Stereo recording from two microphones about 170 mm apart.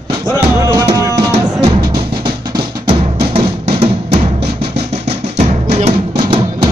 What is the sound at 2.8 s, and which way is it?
Music, 35° right (ahead or behind).